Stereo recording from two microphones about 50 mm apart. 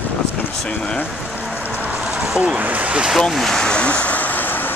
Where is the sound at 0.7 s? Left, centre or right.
Left.